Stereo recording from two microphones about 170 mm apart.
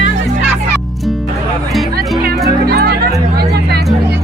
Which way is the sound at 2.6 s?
70° right (ahead or behind).